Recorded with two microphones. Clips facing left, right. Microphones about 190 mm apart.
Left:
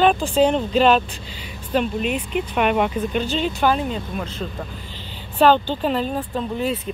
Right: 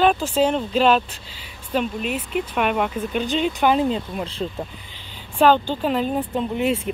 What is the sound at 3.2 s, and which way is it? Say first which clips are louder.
Speech: right 2 dB; 10° right (ahead or behind).